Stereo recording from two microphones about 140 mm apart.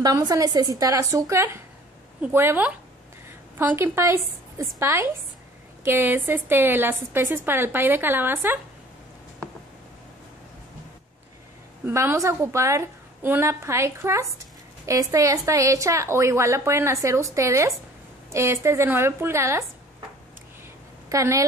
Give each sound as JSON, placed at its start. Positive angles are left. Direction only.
{"t": 0.0, "sound": "a woman's voice", "side_deg": -25}
{"t": 11.8, "sound": "a woman's voice", "side_deg": -15}
{"t": 21.1, "sound": "a woman's voice", "side_deg": -20}